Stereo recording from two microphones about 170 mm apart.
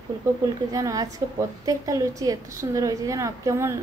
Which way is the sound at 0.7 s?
20° right (ahead or behind).